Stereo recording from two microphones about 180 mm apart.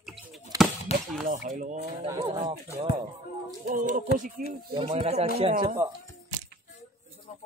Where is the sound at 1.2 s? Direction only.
45° right (ahead or behind).